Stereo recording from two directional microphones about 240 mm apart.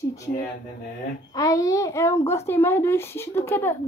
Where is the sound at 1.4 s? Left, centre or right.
Centre.